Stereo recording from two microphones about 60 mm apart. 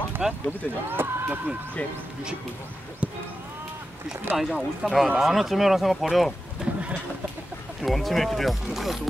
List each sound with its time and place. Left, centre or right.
0.2 s speech: centre
0.8 s basketball bounce: right
3.0 s music: centre
4.4 s speech: centre
6.6 s a sound: centre
7.8 s speech: centre